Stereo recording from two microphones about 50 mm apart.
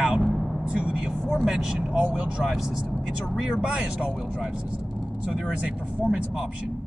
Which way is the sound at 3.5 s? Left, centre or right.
Centre.